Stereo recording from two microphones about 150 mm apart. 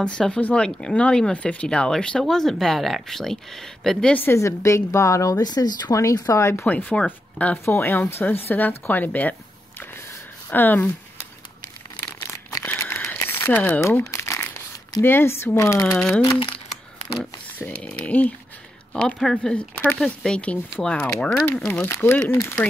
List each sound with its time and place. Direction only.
0.0 s speech: 5° left (ahead or behind)
12.0 s crumpling: 20° left (ahead or behind)
14.9 s speech: 15° left (ahead or behind)
17.2 s speech: 10° left (ahead or behind)